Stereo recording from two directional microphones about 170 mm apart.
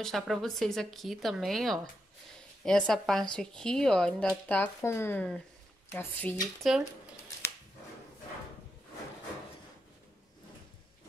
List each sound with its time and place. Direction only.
0.0 s speech: centre (ahead or behind)
6.7 s speech: 5° right (ahead or behind)